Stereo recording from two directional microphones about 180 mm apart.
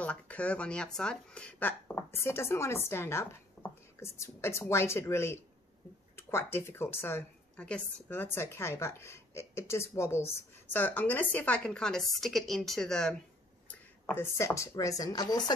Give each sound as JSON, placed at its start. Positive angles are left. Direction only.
{"t": 0.0, "sound": "a woman's voice", "side_deg": 10}